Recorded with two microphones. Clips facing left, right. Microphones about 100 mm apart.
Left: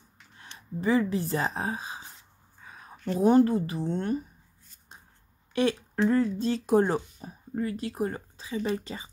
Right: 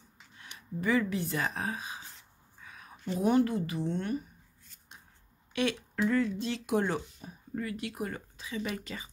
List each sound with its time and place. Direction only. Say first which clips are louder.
0.4 s speech: left 2 dB; 30° left (ahead or behind)
2.6 s a sound: left 3 dB; 30° left (ahead or behind)
3.2 s speech: left 6 dB; 35° left (ahead or behind)
5.5 s speech: left 5 dB; 35° left (ahead or behind)